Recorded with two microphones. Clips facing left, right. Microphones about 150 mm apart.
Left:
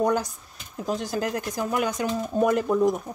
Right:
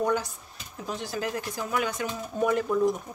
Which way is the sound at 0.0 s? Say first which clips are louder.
Left 3 dB; 40° left (ahead or behind).